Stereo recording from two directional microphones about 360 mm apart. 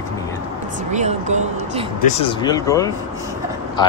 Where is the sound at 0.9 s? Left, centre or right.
Centre.